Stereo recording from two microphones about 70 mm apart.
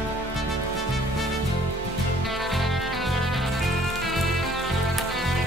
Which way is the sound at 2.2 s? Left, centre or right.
Centre.